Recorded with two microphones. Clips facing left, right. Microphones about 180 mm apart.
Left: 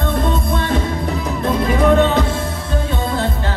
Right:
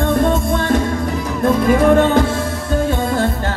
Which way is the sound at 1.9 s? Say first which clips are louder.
Right 2 dB; 50° right (ahead or behind).